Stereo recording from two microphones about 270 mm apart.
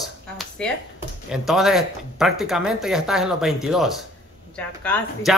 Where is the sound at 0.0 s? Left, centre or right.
Centre.